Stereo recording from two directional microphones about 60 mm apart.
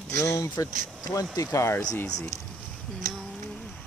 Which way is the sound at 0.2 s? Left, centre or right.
Left.